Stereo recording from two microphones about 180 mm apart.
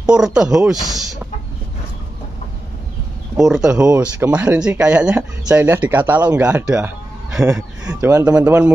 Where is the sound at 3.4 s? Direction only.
5° right (ahead or behind).